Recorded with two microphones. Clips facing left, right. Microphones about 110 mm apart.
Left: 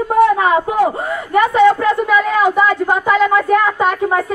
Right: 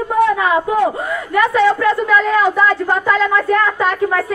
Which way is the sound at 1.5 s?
15° left (ahead or behind).